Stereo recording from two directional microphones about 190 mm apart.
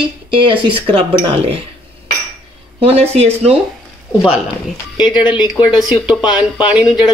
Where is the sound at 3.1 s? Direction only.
35° right (ahead or behind).